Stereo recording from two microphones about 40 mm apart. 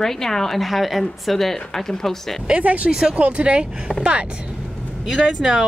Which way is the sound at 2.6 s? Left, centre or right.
Right.